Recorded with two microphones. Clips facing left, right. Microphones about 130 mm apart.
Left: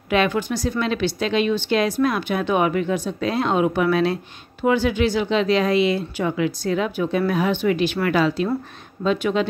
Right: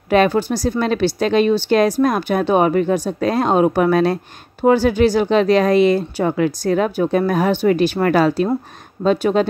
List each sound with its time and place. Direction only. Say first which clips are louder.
0.1 s speech: right 5 dB; 40° right (ahead or behind)